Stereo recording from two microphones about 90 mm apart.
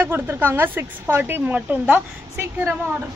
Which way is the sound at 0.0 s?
25° right (ahead or behind).